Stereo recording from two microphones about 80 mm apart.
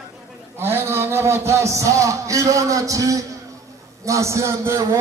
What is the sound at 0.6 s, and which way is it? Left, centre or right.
A man's voice, right.